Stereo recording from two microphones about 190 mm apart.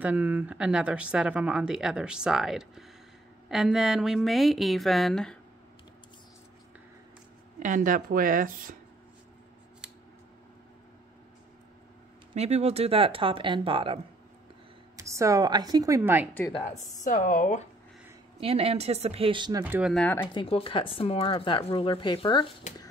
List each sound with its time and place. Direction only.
0.0 s a woman's voice: 10° right (ahead or behind)
7.5 s speech: 45° right (ahead or behind)
12.4 s speech: 35° right (ahead or behind)
15.0 s a woman's voice: 15° right (ahead or behind)
16.5 s speech: 40° left (ahead or behind)
18.4 s speech: 30° right (ahead or behind)
19.6 s a woman's voice: 10° right (ahead or behind)
19.9 s speech: 5° left (ahead or behind)
20.3 s speech: 30° left (ahead or behind)